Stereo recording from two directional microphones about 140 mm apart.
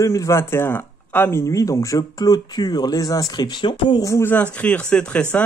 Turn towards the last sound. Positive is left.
turn(degrees=10)  # may be behind; listen again after turning